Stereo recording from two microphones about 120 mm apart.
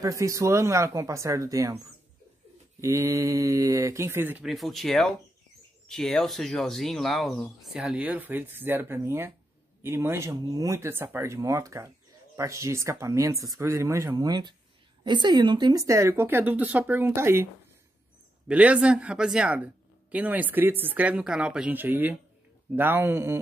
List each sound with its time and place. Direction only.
0.0 s speech: 25° right (ahead or behind)
2.8 s speech: 25° right (ahead or behind)
4.5 s a man's voice: centre (ahead or behind); by 17.5 s 20° right (ahead or behind)
18.5 s a man's voice: 10° right (ahead or behind)